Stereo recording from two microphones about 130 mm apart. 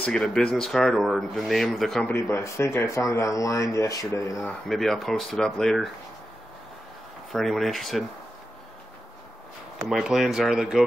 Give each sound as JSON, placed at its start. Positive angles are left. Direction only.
{"t": 0.0, "sound": "speech", "side_deg": 5}
{"t": 2.0, "sound": "speech", "side_deg": 20}
{"t": 4.5, "sound": "speech", "side_deg": 0}
{"t": 7.3, "sound": "speech", "side_deg": 0}
{"t": 9.8, "sound": "speech", "side_deg": 0}